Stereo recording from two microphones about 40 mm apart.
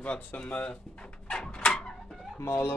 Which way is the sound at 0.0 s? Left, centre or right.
Left.